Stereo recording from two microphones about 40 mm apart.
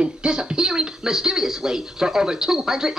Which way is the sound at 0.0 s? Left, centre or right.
Right.